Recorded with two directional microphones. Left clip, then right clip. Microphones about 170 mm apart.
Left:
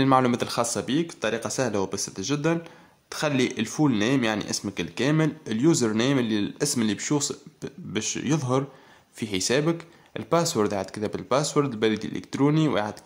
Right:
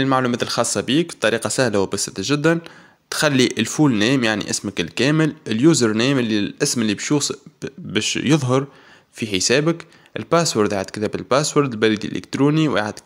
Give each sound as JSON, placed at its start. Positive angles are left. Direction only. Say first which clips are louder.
{"t": 0.0, "sound": "speech", "louder": "right 2 dB", "side_deg": -5}